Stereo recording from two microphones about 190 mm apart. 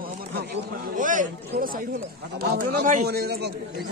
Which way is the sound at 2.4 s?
55° right (ahead or behind).